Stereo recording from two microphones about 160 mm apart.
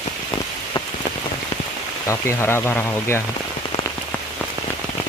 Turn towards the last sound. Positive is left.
turn(degrees=15)  # may be behind; listen again after turning